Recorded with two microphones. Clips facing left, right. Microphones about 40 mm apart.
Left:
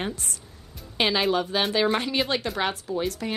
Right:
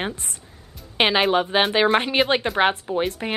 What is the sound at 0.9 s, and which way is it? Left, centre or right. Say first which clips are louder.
Speech: right 4 dB; right.